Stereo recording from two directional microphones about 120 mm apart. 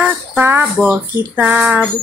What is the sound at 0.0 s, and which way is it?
A woman's voice, 15° right (ahead or behind).